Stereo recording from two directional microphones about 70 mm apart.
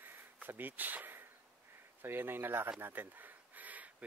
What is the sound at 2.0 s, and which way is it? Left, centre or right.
Speech, right.